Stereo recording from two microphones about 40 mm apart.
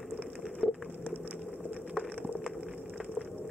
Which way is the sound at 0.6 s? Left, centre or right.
Centre.